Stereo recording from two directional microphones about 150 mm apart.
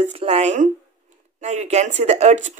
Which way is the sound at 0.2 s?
45° right (ahead or behind).